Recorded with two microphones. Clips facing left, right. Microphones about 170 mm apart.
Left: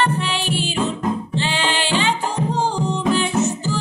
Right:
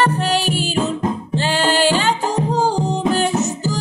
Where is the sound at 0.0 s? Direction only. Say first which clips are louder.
Right 4 dB; 40° right (ahead or behind).